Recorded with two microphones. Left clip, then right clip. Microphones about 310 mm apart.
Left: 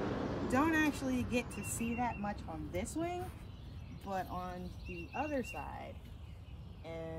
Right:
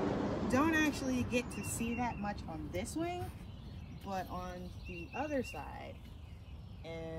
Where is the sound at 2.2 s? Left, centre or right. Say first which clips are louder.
Even; centre.